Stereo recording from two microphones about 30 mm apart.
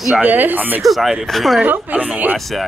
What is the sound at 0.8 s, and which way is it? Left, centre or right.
Speech, centre.